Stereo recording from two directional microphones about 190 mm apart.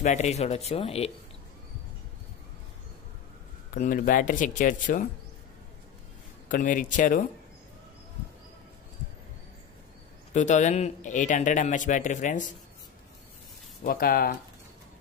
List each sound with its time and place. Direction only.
0.0 s speech: 35° left (ahead or behind)
3.7 s speech: 45° left (ahead or behind)
6.5 s speech: 45° left (ahead or behind)
10.3 s speech: 40° left (ahead or behind)
13.8 s speech: 50° left (ahead or behind)